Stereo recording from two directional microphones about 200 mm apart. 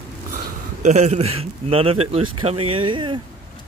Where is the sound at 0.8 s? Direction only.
35° right (ahead or behind).